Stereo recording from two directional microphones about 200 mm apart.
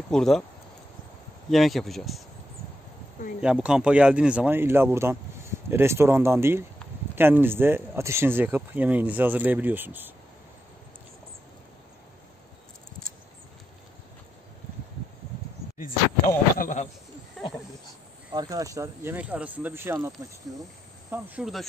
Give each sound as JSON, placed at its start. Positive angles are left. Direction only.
{"t": 0.1, "sound": "speech", "side_deg": 0}
{"t": 1.5, "sound": "speech", "side_deg": 0}
{"t": 3.3, "sound": "speech", "side_deg": -5}
{"t": 16.5, "sound": "snake", "side_deg": 40}
{"t": 17.4, "sound": "a sound", "side_deg": 0}
{"t": 18.3, "sound": "speech", "side_deg": -20}
{"t": 21.1, "sound": "speech", "side_deg": -5}